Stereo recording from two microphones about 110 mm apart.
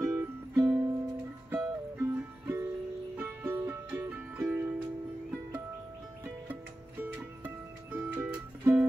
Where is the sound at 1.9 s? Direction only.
20° right (ahead or behind).